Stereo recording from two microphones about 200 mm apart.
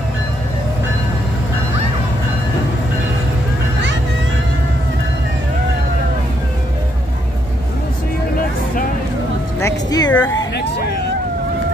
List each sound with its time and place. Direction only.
9.6 s music: 15° left (ahead or behind)